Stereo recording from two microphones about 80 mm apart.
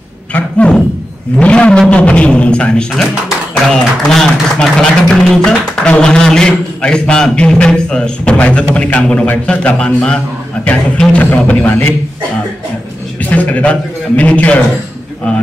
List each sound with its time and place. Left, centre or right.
0.3 s a sound: centre
1.4 s a man's voice: centre
13.2 s a man's voice: centre